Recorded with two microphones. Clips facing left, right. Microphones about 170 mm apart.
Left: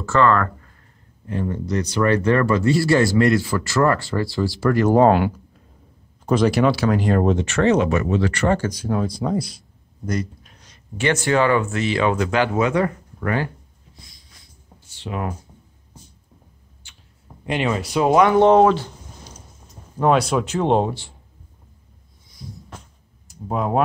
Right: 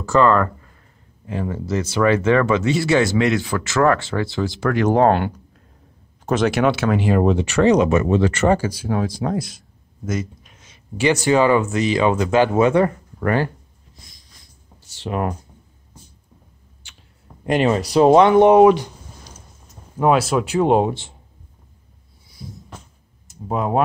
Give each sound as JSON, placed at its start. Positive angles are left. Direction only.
{"t": 0.0, "sound": "speech", "side_deg": -15}
{"t": 1.3, "sound": "speech", "side_deg": -90}
{"t": 1.8, "sound": "speech", "side_deg": -5}
{"t": 8.5, "sound": "speech", "side_deg": -5}
{"t": 9.3, "sound": "a sound", "side_deg": 0}
{"t": 11.2, "sound": "speech", "side_deg": -15}
{"t": 13.2, "sound": "speech", "side_deg": -40}
{"t": 15.0, "sound": "speech", "side_deg": -50}
{"t": 16.8, "sound": "a sound", "side_deg": -80}
{"t": 17.5, "sound": "speech", "side_deg": -40}
{"t": 18.4, "sound": "a sound", "side_deg": -15}
{"t": 20.0, "sound": "speech", "side_deg": -5}
{"t": 22.4, "sound": "speech", "side_deg": -5}